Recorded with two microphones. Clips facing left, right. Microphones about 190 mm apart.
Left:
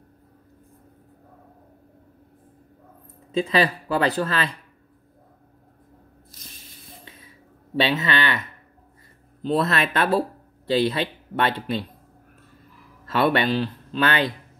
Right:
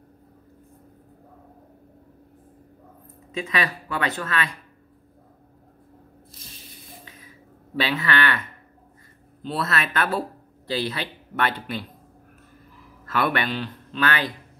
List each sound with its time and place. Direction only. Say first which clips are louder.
3.3 s speech: left 6 dB; 30° left (ahead or behind)
7.7 s speech: left 2 dB; 25° left (ahead or behind)
9.4 s speech: left 5 dB; 35° left (ahead or behind)
13.0 s speech: left 4 dB; 25° left (ahead or behind)